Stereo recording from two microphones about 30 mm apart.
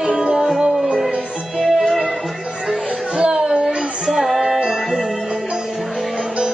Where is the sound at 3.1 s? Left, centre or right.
Right.